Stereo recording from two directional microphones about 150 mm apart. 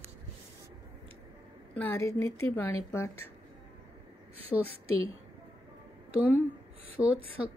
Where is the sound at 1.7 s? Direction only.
10° left (ahead or behind).